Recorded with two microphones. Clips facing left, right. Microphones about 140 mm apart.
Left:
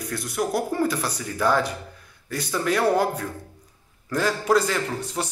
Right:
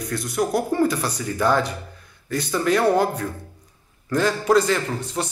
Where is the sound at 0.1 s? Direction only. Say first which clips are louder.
Right 3 dB; 5° left (ahead or behind).